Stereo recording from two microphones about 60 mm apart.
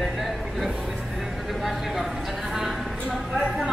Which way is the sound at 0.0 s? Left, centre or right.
Centre.